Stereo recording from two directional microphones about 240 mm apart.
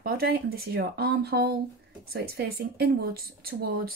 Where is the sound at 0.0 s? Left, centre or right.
Right.